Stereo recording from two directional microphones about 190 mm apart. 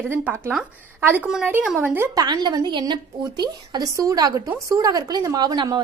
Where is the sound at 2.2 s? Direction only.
20° right (ahead or behind).